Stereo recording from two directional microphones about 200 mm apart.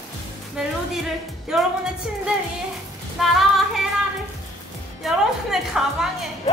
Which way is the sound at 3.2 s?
Centre (ahead or behind).